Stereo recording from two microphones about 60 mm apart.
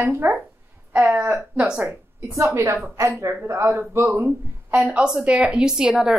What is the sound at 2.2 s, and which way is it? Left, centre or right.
A woman's voice, right.